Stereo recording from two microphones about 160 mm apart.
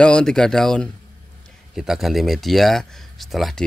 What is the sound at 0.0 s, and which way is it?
Speech, 5° left (ahead or behind).